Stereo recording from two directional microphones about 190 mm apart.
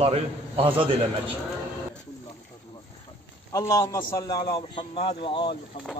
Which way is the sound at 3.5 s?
15° left (ahead or behind).